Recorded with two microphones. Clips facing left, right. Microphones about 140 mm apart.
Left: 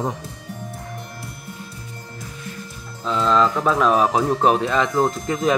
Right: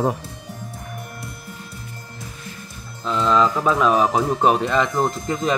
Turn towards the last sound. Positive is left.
turn(degrees=0)  # may be behind; listen again after turning